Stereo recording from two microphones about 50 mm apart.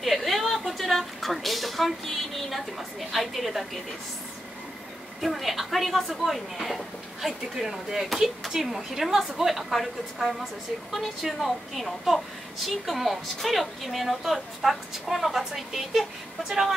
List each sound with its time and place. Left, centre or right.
0.0 s a woman's voice: centre
5.2 s speech: centre